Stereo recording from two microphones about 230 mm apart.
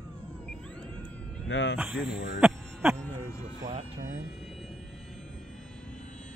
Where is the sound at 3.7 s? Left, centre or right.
Right.